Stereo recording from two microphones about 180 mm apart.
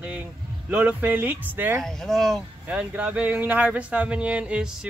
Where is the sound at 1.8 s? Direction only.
Centre (ahead or behind).